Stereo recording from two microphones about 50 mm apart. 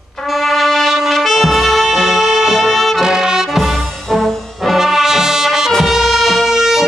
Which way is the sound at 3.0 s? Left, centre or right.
Centre.